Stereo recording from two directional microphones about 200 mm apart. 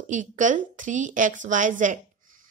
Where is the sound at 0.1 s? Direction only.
40° right (ahead or behind).